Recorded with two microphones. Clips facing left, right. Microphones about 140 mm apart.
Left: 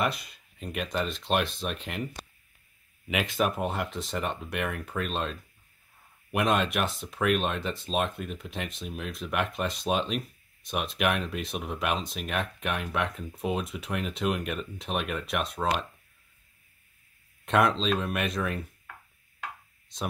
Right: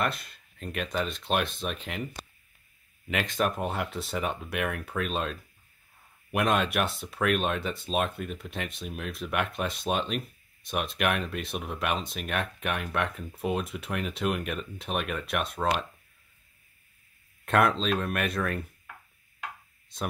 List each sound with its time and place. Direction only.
0.0 s speech: centre (ahead or behind)
3.1 s speech: 5° left (ahead or behind)
17.5 s speech: 5° right (ahead or behind)